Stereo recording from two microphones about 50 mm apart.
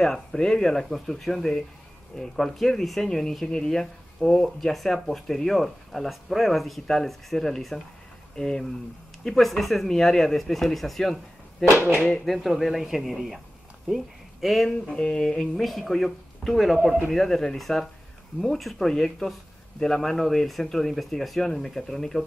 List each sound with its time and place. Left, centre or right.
0.0 s speech: centre
14.9 s speech: centre
15.5 s speech: centre